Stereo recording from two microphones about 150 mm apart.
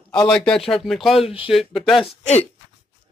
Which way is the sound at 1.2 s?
40° left (ahead or behind).